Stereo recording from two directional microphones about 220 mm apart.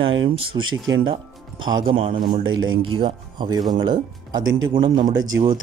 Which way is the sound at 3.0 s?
20° right (ahead or behind).